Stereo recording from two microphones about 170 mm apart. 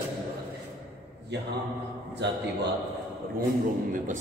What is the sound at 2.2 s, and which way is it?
Speech, 90° right.